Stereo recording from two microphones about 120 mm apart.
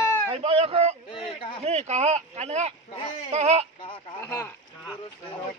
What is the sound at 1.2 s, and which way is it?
Speech, 45° left (ahead or behind).